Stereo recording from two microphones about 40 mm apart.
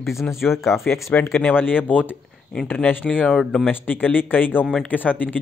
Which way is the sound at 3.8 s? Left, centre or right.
Left.